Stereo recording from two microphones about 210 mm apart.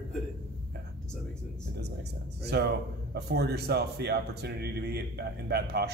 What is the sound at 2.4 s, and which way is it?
Speech, 50° right (ahead or behind).